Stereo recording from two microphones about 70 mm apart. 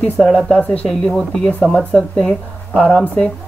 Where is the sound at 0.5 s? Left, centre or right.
Centre.